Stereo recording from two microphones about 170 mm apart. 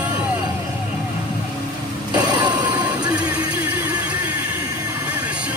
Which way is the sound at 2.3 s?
25° right (ahead or behind).